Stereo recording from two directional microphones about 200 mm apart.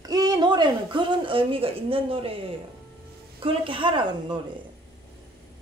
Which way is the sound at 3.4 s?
25° right (ahead or behind).